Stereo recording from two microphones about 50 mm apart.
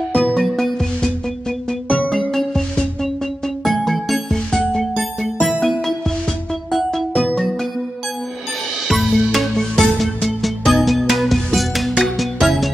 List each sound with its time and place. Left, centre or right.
0.1 s music: centre
1.7 s music: left
2.0 s music: centre
8.8 s music: centre